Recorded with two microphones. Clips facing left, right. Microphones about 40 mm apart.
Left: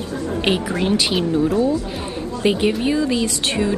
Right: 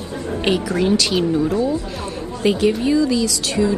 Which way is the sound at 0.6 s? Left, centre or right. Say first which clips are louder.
Right 2 dB; left.